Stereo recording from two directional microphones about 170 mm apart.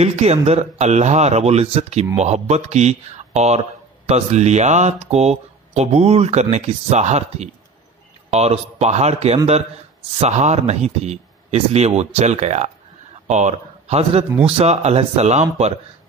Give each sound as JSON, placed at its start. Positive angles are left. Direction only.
{"t": 0.0, "sound": "speech", "side_deg": -40}